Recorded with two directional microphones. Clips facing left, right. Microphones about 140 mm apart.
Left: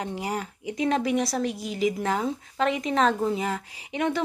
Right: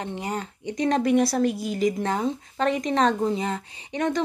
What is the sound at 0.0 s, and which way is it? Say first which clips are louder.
A woman's voice: even; 10° left (ahead or behind).